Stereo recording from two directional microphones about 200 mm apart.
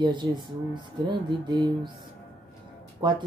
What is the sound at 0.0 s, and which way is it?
Speech, 20° right (ahead or behind).